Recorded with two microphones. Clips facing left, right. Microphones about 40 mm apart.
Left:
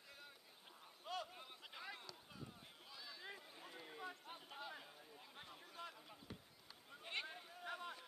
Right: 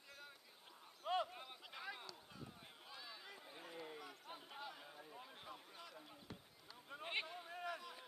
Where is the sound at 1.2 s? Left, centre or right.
Centre.